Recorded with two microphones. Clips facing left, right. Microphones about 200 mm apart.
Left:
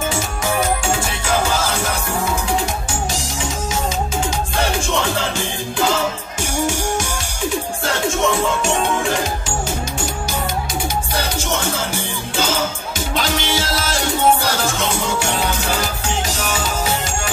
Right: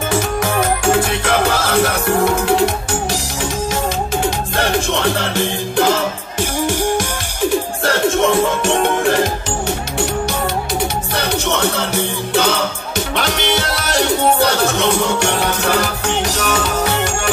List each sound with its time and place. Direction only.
0.9 s music: 60° right (ahead or behind)
4.6 s music: 60° right (ahead or behind)
8.6 s music: 60° right (ahead or behind)
11.1 s music: 65° right (ahead or behind)